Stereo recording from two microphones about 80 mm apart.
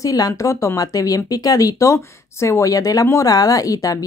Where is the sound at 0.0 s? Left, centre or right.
Left.